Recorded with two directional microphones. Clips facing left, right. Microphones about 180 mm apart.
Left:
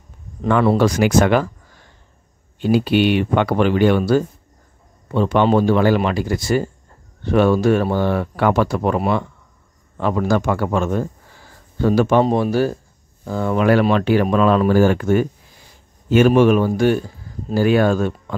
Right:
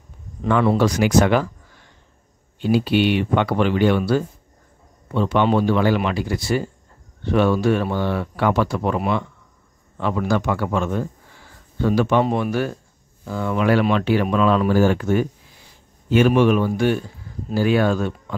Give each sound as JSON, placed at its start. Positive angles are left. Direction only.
{"t": 0.7, "sound": "speech", "side_deg": 50}
{"t": 2.6, "sound": "speech", "side_deg": 50}